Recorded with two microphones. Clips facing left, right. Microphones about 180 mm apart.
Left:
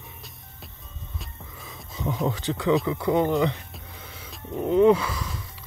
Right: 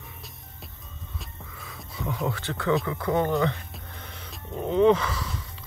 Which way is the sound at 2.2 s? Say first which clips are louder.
Left 3 dB; 15° left (ahead or behind).